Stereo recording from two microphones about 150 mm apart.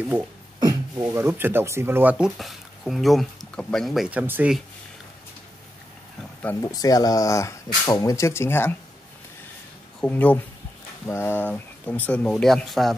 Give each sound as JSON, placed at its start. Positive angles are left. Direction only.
{"t": 0.6, "sound": "speech", "side_deg": -25}
{"t": 6.6, "sound": "speech", "side_deg": 25}
{"t": 9.9, "sound": "speech", "side_deg": 10}